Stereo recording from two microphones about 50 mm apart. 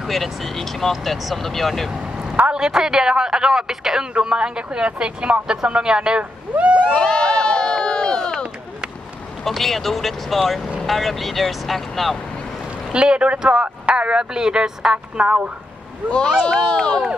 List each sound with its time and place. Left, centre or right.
0.0 s speech: centre
2.1 s a man's voice: right
7.0 s run: centre
9.4 s speech: centre
12.9 s speech: centre
15.2 s speech: right
16.4 s speech: centre